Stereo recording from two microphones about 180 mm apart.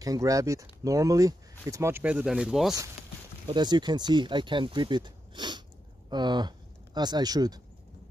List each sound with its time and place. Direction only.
0.0 s speech: 20° right (ahead or behind); by 2.7 s centre (ahead or behind)
3.4 s speech: 25° right (ahead or behind)